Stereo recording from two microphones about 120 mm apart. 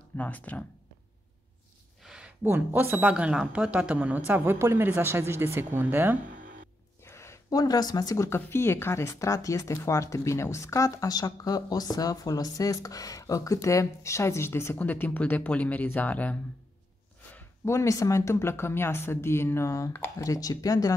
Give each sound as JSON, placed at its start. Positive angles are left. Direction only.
{"t": 0.2, "sound": "speech", "side_deg": 15}
{"t": 2.0, "sound": "a sound", "side_deg": -10}
{"t": 2.4, "sound": "speech", "side_deg": -20}
{"t": 7.1, "sound": "speech", "side_deg": 25}
{"t": 17.3, "sound": "speech", "side_deg": 25}